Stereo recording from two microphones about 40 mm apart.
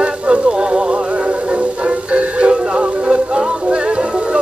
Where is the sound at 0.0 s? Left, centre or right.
Right.